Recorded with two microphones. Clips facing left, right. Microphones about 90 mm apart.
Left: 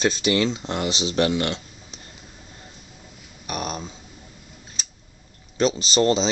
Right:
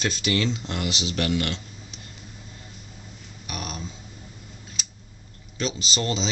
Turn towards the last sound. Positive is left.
turn(degrees=35)  # may be behind; listen again after turning